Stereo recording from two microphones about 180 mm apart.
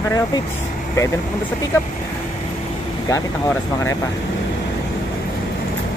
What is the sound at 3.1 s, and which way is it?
Speech, 15° left (ahead or behind).